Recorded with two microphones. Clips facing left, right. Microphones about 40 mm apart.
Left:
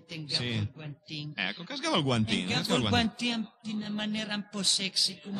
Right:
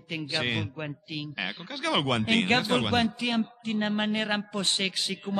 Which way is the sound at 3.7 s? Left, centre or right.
Right.